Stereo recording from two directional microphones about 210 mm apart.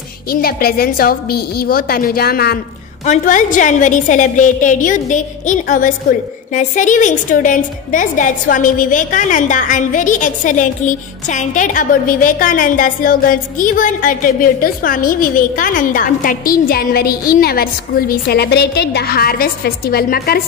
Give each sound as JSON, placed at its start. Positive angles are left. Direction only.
{"t": 0.3, "sound": "a woman's voice", "side_deg": 45}